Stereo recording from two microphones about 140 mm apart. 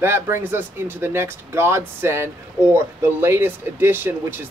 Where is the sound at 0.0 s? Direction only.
15° right (ahead or behind).